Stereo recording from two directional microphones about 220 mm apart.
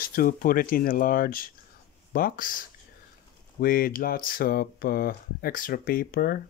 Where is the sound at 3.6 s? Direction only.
40° left (ahead or behind).